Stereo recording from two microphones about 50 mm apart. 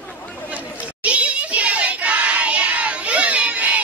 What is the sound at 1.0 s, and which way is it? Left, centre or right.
Child singing, right.